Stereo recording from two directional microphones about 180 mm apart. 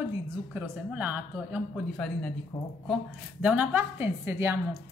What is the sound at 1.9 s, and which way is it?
Speech, 5° left (ahead or behind).